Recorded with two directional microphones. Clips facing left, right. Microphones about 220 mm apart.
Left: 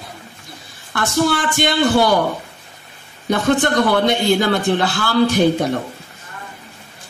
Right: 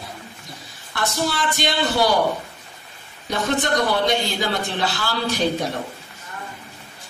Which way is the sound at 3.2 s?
55° left (ahead or behind).